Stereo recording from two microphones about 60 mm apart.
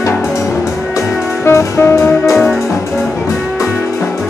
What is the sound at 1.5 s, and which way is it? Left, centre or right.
Music, left.